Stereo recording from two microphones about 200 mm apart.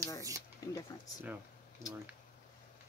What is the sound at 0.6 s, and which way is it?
Speech, 15° left (ahead or behind).